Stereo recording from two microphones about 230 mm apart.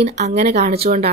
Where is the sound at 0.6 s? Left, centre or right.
Right.